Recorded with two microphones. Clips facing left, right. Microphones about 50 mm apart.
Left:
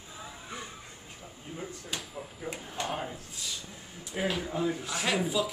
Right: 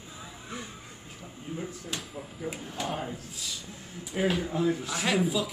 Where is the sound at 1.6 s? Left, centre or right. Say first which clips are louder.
Even; centre.